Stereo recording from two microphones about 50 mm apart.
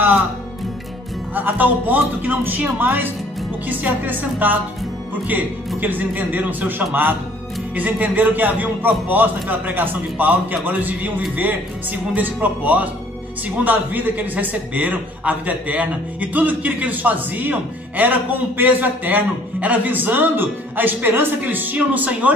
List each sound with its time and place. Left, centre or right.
1.3 s a man's voice: right
5.8 s a man's voice: right
8.2 s a man's voice: right